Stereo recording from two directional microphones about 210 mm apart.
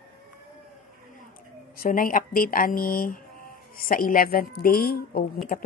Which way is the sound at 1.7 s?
40° left (ahead or behind).